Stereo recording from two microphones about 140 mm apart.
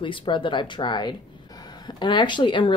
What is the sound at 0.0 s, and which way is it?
Speech, 35° left (ahead or behind).